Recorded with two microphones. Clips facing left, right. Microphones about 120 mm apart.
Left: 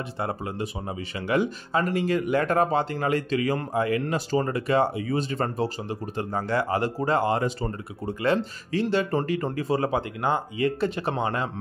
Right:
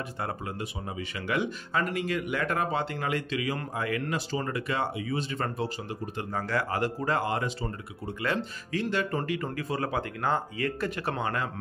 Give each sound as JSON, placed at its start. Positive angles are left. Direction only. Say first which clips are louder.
{"t": 0.2, "sound": "speech", "louder": "left 6 dB", "side_deg": 25}
{"t": 3.7, "sound": "speech", "louder": "left 5 dB", "side_deg": 30}
{"t": 7.4, "sound": "speech", "louder": "left 5 dB", "side_deg": 45}